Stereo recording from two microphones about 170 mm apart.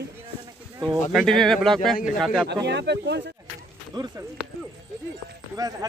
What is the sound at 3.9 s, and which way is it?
Speech, 25° right (ahead or behind).